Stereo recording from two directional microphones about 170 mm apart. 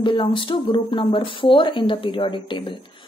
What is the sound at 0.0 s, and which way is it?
Speech, 30° left (ahead or behind).